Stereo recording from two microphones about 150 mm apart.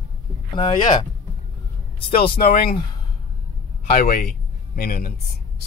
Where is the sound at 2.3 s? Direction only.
80° left.